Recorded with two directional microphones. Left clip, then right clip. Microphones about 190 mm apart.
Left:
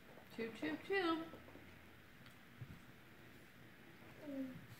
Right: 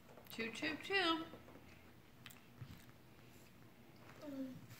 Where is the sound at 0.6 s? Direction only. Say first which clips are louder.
Right 2 dB; 25° right (ahead or behind).